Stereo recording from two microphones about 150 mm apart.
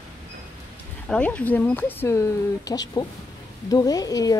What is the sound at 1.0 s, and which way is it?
Speech, 5° left (ahead or behind).